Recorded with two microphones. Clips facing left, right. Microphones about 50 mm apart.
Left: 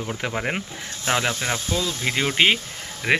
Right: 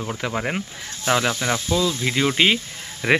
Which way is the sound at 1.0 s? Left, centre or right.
Centre.